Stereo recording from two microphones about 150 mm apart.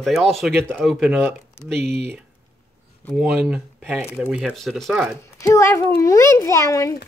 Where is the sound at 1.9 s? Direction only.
90° right.